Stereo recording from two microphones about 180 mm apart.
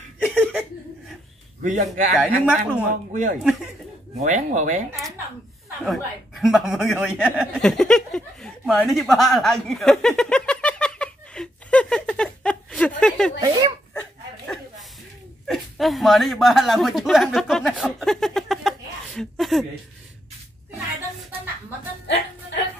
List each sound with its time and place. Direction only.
0.3 s chuckle: 10° right (ahead or behind)
1.6 s a man's voice: 45° right (ahead or behind)
2.1 s speech: 10° right (ahead or behind)
2.9 s speech: 45° right (ahead or behind)
5.9 s chuckle: centre (ahead or behind)
13.4 s speech: 25° right (ahead or behind)
15.4 s a sound: centre (ahead or behind)